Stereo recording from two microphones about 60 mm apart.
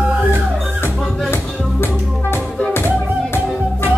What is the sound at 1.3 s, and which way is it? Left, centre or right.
Music, left.